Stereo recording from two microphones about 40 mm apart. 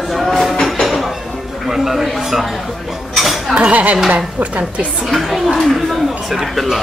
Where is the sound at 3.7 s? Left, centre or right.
Right.